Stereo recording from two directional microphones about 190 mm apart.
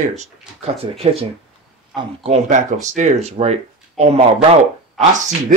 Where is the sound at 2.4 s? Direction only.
40° right (ahead or behind).